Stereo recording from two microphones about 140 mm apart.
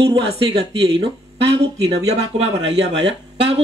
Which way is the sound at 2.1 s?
45° right (ahead or behind).